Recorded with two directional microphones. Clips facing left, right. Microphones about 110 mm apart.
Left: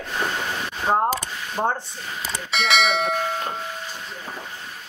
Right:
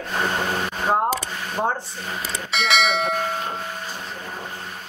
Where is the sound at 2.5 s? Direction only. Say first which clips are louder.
Even; centre (ahead or behind).